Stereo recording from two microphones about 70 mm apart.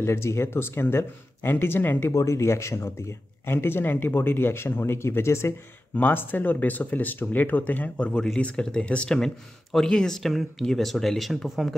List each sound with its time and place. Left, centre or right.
0.0 s speech: left
2.1 s speech: left
5.9 s speech: left; by 11.7 s centre